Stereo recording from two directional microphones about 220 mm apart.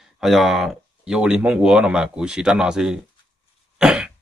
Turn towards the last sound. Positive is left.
turn(degrees=-5)  # may be behind; listen again after turning